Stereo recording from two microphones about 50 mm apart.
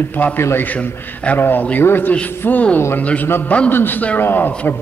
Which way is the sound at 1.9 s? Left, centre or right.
Left.